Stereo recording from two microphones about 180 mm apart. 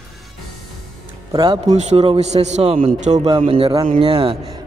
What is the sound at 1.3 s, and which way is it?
Speech, 25° right (ahead or behind).